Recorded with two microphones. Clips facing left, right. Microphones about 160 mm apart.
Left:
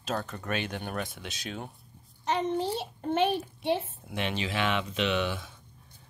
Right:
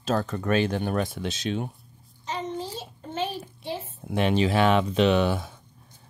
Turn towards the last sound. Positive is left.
turn(degrees=-40)  # may be behind; listen again after turning